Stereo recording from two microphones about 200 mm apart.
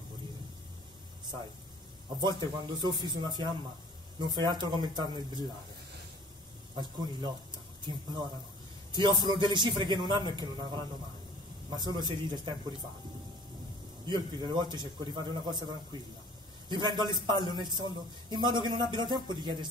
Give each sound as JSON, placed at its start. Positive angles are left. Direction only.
{"t": 2.2, "sound": "a man's voice", "side_deg": -20}
{"t": 6.8, "sound": "a man's voice", "side_deg": -20}
{"t": 14.0, "sound": "a man's voice", "side_deg": -20}